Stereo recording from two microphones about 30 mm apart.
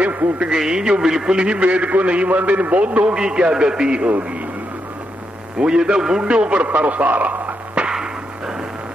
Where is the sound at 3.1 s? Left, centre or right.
Right.